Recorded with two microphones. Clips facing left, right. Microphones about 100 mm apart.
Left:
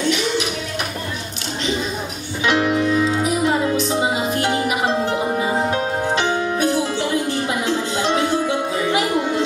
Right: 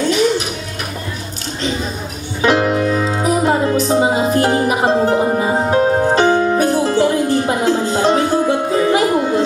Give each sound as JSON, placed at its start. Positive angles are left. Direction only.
{"t": 2.4, "sound": "music", "side_deg": -40}